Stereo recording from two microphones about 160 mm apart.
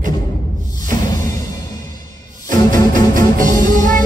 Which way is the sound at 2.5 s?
55° right (ahead or behind).